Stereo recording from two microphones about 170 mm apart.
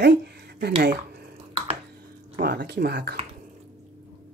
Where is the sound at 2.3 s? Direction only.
65° right (ahead or behind).